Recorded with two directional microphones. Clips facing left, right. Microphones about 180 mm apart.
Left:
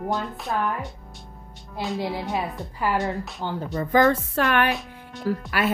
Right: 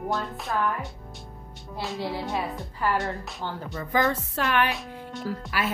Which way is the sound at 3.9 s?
55° left (ahead or behind).